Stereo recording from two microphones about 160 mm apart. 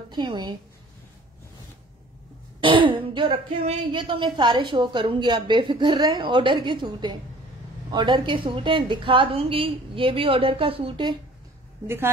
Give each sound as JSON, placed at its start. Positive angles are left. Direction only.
{"t": 0.1, "sound": "speech", "side_deg": -30}
{"t": 2.6, "sound": "a woman's voice", "side_deg": -30}